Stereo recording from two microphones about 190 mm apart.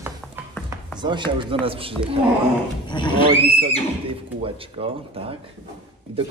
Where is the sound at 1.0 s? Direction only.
25° right (ahead or behind).